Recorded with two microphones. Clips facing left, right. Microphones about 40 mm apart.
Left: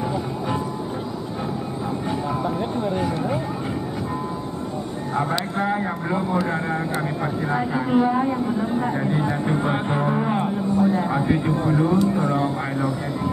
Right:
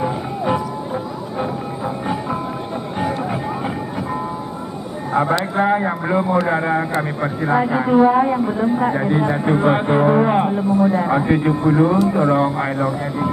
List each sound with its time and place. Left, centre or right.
5.6 s a sound: right
6.4 s vehicle: right
8.0 s a woman's voice: right